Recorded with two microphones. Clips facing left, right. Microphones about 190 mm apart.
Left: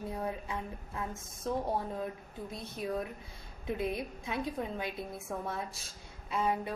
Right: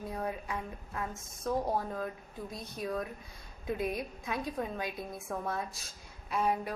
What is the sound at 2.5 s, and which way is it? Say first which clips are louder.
A woman's voice: even; 25° left (ahead or behind).